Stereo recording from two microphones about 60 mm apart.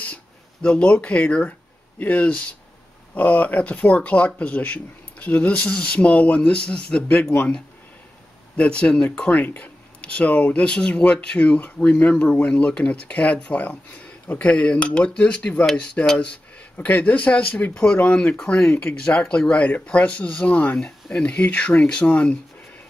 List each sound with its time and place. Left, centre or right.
0.0 s speech: left
8.5 s speech: centre
16.7 s speech: left